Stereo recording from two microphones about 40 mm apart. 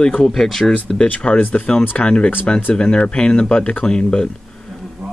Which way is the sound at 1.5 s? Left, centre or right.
Left.